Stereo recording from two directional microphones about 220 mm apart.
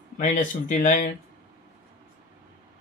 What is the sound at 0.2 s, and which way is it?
Speech, 35° left (ahead or behind).